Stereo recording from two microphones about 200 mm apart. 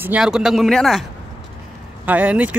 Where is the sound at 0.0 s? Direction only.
5° right (ahead or behind).